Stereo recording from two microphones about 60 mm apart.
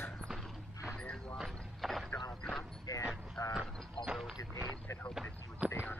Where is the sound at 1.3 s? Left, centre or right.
Centre.